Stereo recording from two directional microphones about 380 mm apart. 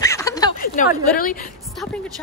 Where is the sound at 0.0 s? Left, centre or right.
Centre.